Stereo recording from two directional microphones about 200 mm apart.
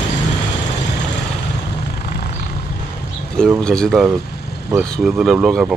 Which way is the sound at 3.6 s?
5° left (ahead or behind).